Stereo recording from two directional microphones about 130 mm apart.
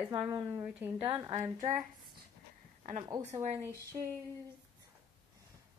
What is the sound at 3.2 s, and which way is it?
Speech, 65° right (ahead or behind).